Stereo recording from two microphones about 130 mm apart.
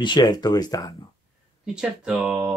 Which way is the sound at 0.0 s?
35° left (ahead or behind).